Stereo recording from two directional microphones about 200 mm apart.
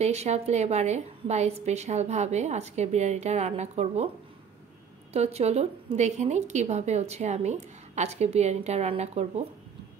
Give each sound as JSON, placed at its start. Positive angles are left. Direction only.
{"t": 0.0, "sound": "a woman's voice", "side_deg": -35}
{"t": 5.1, "sound": "a woman's voice", "side_deg": -30}